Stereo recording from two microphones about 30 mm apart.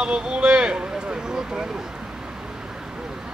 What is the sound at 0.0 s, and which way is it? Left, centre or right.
Speech, right.